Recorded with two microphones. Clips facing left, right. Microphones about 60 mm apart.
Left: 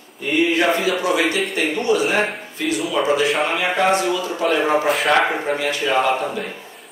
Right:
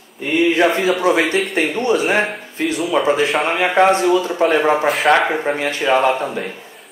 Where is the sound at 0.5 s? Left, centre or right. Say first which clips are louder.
Right 3 dB; right.